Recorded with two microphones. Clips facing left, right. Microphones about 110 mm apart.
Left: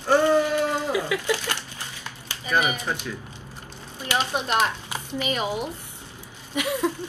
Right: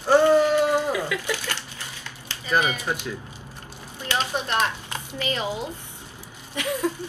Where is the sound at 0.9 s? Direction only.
15° left (ahead or behind).